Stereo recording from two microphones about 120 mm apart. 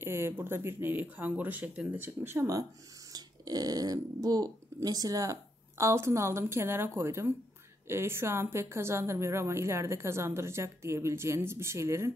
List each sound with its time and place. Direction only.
0.0 s speech: 20° right (ahead or behind)